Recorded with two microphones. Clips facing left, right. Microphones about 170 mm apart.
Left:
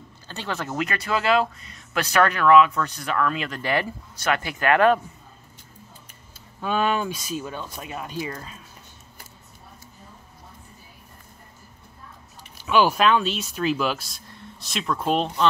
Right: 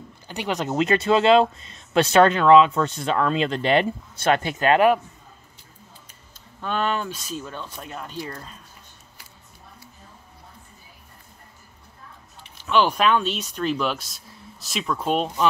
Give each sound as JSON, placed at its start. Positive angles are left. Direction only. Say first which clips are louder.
{"t": 0.3, "sound": "speech", "louder": "right 4 dB", "side_deg": -15}
{"t": 6.6, "sound": "speech", "louder": "left 2 dB", "side_deg": 10}
{"t": 12.5, "sound": "speech", "louder": "left 1 dB", "side_deg": 10}